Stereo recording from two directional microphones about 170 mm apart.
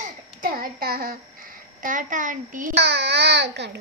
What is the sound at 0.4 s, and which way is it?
Speech, 60° right (ahead or behind).